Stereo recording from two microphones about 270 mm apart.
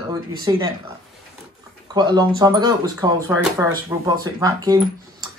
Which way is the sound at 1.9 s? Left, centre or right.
Centre.